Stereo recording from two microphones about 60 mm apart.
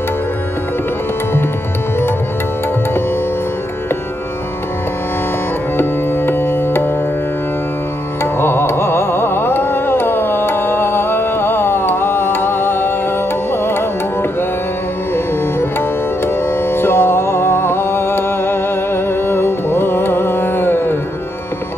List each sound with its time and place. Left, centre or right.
5.8 s music: left
8.2 s carnatic music: left
13.5 s music: left
16.3 s music: left